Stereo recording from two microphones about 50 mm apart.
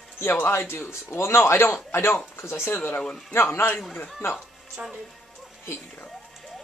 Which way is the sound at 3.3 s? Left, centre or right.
Left.